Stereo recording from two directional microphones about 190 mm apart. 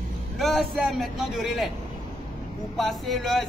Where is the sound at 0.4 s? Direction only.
Centre (ahead or behind).